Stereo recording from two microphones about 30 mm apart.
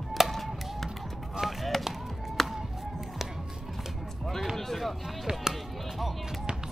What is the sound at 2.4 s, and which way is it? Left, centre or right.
Music, centre.